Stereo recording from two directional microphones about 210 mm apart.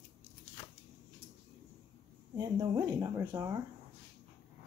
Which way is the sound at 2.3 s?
15° right (ahead or behind).